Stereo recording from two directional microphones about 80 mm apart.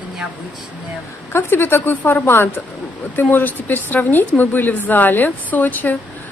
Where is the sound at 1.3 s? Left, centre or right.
Left.